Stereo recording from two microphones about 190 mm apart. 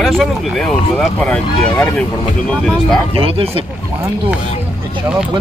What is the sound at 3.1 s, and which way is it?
Speech, 30° right (ahead or behind).